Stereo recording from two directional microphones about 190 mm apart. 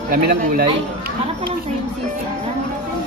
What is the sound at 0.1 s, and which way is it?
Speech, 50° right (ahead or behind).